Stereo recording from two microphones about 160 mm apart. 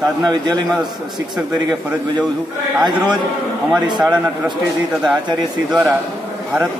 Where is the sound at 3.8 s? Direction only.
25° right (ahead or behind).